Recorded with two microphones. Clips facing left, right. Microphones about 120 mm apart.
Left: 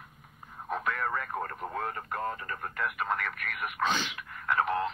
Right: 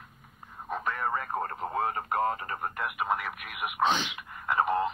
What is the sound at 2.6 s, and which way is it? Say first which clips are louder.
Speech: right 1 dB; 10° right (ahead or behind).